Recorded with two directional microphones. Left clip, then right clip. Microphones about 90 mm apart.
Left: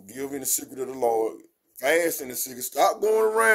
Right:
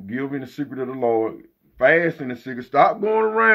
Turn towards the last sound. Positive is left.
turn(degrees=25)  # may be behind; listen again after turning